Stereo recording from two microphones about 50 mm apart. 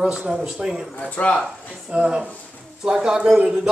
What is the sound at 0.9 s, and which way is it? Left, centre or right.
Speech, left.